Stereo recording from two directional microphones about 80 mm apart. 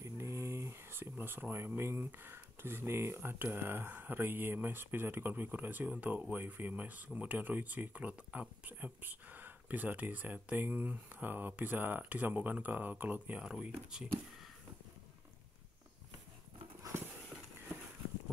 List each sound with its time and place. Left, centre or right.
0.0 s a sound: right
1.1 s speech: right
13.4 s speech: centre